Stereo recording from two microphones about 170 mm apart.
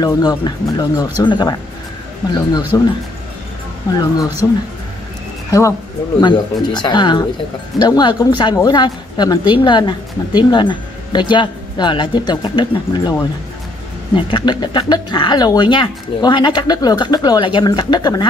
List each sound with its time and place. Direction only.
0.0 s speech: 25° left (ahead or behind)
4.4 s speech: 15° left (ahead or behind)
14.1 s speech: 30° left (ahead or behind)